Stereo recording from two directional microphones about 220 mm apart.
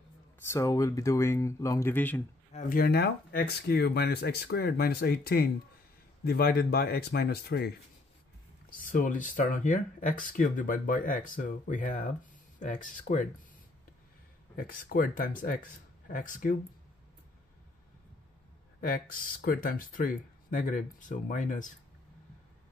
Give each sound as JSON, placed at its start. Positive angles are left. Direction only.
{"t": 0.4, "sound": "speech", "side_deg": 10}
{"t": 2.5, "sound": "speech", "side_deg": 40}
{"t": 8.7, "sound": "speech", "side_deg": 40}
{"t": 14.5, "sound": "speech", "side_deg": 40}
{"t": 19.4, "sound": "speech", "side_deg": 40}